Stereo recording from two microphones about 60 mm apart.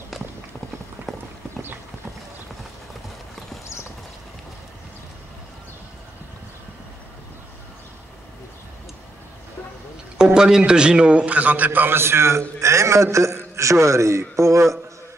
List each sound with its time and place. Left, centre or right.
1.1 s clip-clop: centre
10.1 s a man's voice: centre; by 14.8 s right